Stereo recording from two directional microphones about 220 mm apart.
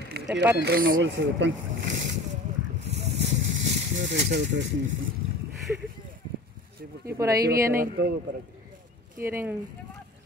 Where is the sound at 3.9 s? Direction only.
55° right (ahead or behind).